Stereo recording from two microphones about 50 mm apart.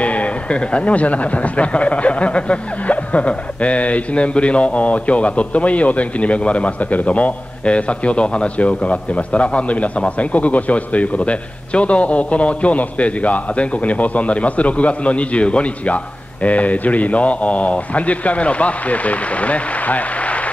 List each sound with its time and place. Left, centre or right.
0.0 s speech: left